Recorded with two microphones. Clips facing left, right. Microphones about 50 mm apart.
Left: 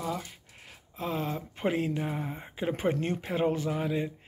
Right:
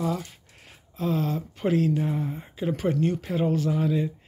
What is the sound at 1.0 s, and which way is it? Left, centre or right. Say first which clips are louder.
Speech: right 6 dB; centre.